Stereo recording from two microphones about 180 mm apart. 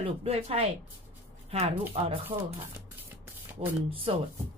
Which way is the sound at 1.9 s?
35° right (ahead or behind).